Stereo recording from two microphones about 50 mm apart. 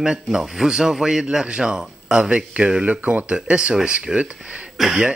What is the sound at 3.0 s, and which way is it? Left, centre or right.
Speech, right.